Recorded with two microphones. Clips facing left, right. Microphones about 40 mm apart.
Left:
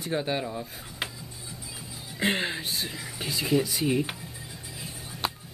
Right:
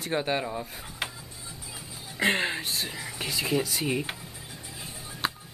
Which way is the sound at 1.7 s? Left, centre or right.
Right.